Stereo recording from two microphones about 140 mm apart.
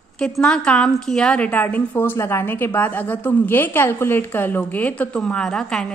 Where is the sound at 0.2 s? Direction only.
5° left (ahead or behind).